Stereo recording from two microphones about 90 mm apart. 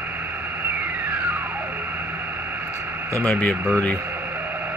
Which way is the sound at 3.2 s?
20° left (ahead or behind).